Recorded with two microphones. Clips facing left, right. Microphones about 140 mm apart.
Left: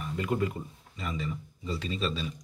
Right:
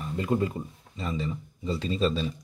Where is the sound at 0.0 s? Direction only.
30° right (ahead or behind).